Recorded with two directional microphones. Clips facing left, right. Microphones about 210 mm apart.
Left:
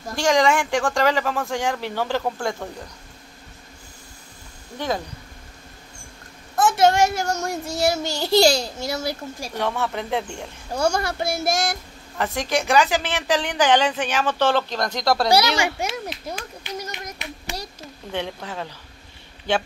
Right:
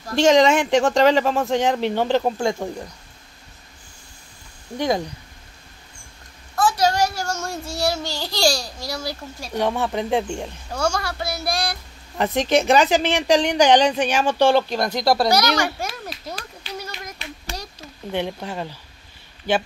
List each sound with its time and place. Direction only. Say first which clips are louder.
0.1 s speech: right 4 dB; 25° right (ahead or behind)
4.7 s a woman's voice: right 4 dB; 15° right (ahead or behind)
6.5 s child singing: left 2 dB; 20° left (ahead or behind)
9.6 s a woman's voice: right 4 dB; 15° right (ahead or behind)
10.7 s speech: left 2 dB; 20° left (ahead or behind)
11.4 s child singing: left 2 dB; 20° left (ahead or behind)
12.2 s a woman's voice: right 5 dB; 20° right (ahead or behind)
15.5 s speech: even; 10° left (ahead or behind)
17.2 s a sound: left 1 dB; 20° left (ahead or behind)
18.1 s a woman's voice: right 3 dB; 15° right (ahead or behind)